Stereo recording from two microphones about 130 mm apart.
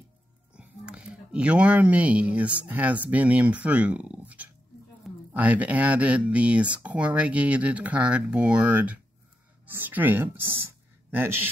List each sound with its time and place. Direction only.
0.6 s a woman's voice: 5° right (ahead or behind)